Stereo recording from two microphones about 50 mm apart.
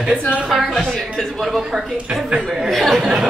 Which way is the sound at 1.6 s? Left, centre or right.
Centre.